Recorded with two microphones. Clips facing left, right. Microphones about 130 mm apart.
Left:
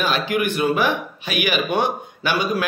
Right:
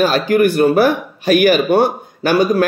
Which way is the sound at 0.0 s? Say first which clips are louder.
Right 8 dB; 40° right (ahead or behind).